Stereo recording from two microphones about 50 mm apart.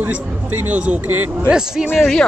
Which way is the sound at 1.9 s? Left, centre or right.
Centre.